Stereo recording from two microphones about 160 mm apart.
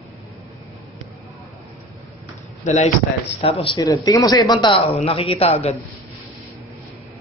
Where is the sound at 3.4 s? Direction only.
35° left (ahead or behind).